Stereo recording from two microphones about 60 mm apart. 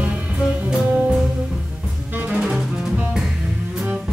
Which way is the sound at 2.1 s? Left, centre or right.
Right.